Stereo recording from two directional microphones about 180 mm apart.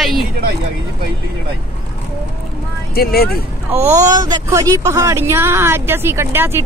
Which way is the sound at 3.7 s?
15° right (ahead or behind).